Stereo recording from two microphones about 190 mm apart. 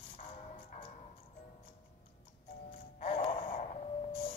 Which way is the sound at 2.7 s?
35° left (ahead or behind).